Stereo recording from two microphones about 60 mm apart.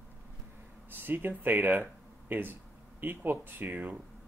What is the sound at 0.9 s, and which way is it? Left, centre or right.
Speech, right.